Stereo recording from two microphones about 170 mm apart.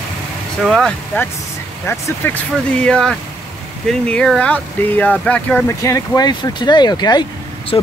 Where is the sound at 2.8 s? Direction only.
5° left (ahead or behind).